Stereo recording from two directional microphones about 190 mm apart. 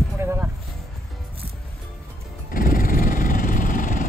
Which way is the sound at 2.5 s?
50° left (ahead or behind).